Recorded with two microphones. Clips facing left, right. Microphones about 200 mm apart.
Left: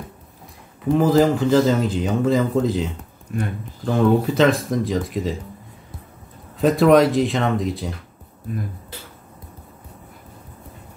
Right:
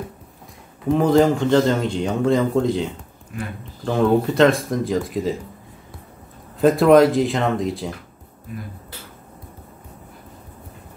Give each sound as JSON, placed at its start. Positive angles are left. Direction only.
{"t": 0.8, "sound": "speech", "side_deg": 0}
{"t": 3.3, "sound": "speech", "side_deg": 45}
{"t": 3.8, "sound": "speech", "side_deg": 0}
{"t": 6.6, "sound": "speech", "side_deg": 0}